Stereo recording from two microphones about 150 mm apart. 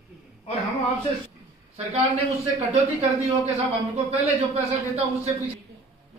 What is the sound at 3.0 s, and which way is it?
A man's voice, 45° right (ahead or behind).